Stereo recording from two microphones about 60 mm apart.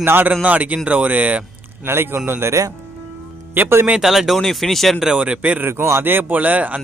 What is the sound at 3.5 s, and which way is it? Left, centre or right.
Speech, right.